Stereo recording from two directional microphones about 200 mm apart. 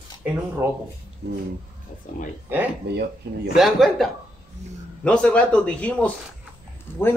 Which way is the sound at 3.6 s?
Centre (ahead or behind).